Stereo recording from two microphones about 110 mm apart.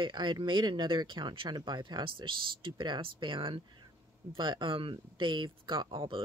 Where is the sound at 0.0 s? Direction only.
45° right (ahead or behind).